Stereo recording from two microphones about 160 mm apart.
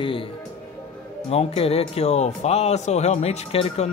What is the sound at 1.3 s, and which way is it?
Speech, 40° left (ahead or behind).